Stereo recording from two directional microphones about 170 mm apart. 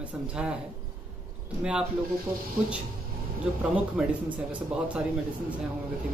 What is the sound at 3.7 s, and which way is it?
Speech, 10° right (ahead or behind).